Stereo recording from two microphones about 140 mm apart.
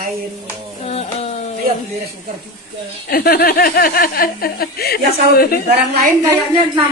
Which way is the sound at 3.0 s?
90° left.